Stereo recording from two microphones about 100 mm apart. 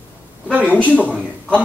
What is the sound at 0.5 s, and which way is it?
Speech, 15° right (ahead or behind).